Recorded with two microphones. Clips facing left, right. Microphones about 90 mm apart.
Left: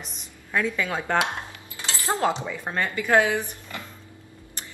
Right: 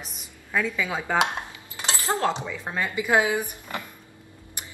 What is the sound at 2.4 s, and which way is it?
Speech, 5° left (ahead or behind).